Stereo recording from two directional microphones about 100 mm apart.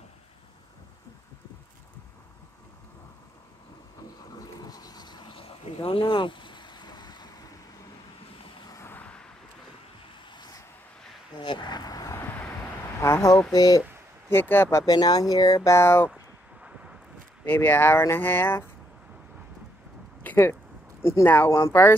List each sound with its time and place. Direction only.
4.4 s a sound: 40° left (ahead or behind)
8.8 s vehicle: 15° left (ahead or behind)
10.3 s vehicle: 40° left (ahead or behind)
13.0 s a sound: 30° left (ahead or behind)
13.5 s speech: 35° left (ahead or behind)
14.3 s speech: 20° left (ahead or behind)
14.9 s speech: 40° left (ahead or behind)
15.7 s speech: 25° left (ahead or behind)
17.5 s speech: 20° left (ahead or behind)
20.2 s a sound: 20° left (ahead or behind)
21.0 s speech: 25° left (ahead or behind)